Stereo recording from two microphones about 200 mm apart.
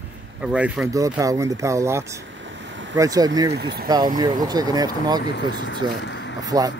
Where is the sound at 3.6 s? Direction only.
55° right (ahead or behind).